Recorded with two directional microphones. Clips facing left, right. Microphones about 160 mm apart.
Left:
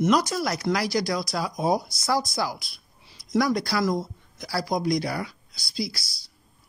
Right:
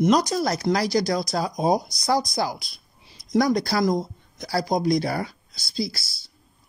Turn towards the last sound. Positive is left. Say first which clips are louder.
# right 3 dB
turn(degrees=-25)  # may be behind; listen again after turning